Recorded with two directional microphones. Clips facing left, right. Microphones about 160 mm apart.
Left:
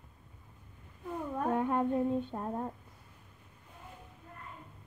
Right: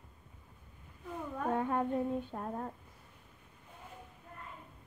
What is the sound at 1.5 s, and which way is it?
Humming, 15° left (ahead or behind).